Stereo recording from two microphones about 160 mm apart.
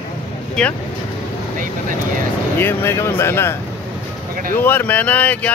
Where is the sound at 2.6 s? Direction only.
15° left (ahead or behind).